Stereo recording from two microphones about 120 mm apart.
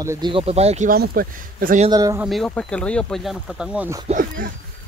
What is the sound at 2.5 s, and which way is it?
Speech, 10° left (ahead or behind).